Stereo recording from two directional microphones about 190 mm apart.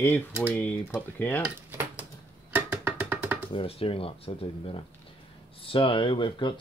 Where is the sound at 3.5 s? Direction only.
30° left (ahead or behind).